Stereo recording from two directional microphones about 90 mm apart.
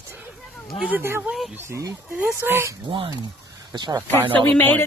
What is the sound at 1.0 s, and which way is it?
Speech, 25° right (ahead or behind).